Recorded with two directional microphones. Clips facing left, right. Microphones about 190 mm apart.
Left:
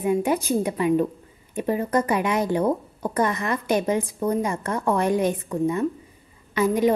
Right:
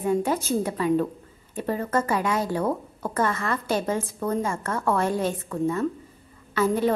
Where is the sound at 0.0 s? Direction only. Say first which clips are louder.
Left 2 dB; 15° left (ahead or behind).